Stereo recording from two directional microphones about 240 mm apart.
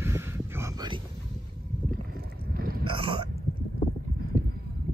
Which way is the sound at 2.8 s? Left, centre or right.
Right.